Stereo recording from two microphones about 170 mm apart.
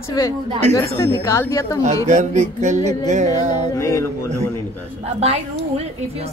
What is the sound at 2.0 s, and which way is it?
Music, 45° right (ahead or behind).